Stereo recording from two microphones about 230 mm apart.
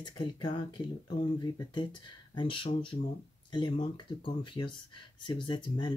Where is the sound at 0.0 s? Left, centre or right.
Centre.